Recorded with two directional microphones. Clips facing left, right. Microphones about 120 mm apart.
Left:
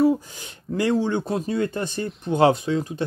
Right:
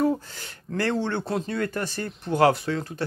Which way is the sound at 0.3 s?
15° left (ahead or behind).